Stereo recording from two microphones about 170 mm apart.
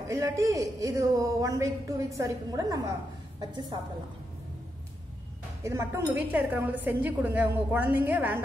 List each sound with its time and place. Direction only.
0.1 s a man's voice: 20° right (ahead or behind)
5.6 s a woman's voice: 15° right (ahead or behind)